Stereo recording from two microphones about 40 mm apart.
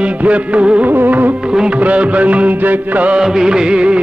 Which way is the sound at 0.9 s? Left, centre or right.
Right.